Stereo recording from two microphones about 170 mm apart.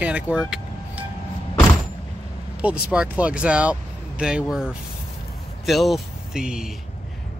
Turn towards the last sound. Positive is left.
turn(degrees=-5)  # may be behind; listen again after turning